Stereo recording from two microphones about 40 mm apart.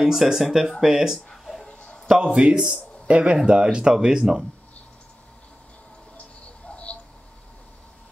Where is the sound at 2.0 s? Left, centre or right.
Right.